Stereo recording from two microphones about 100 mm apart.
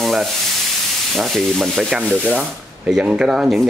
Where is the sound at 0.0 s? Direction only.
Centre (ahead or behind).